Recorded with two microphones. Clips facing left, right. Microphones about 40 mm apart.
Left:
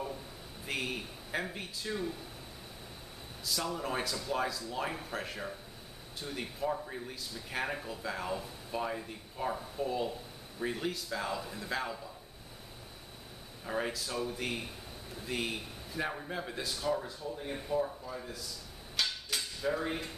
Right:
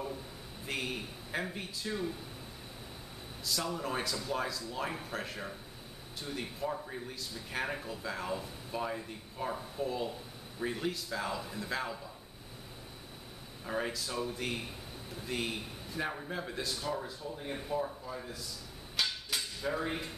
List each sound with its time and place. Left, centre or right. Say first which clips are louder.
0.7 s a man's voice: left 1 dB; centre
3.4 s a man's voice: even; centre
13.7 s a man's voice: even; centre
18.9 s a sound: even; centre